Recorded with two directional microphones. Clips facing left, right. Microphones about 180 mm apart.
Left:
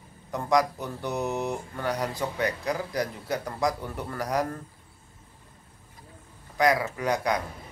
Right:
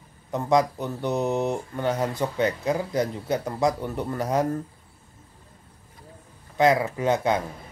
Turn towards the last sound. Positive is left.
turn(degrees=-25)  # may be behind; listen again after turning